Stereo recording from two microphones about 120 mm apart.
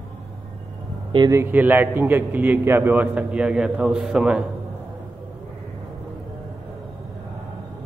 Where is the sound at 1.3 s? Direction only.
15° right (ahead or behind).